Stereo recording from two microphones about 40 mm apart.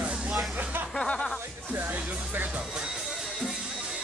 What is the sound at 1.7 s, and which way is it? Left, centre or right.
Music, right.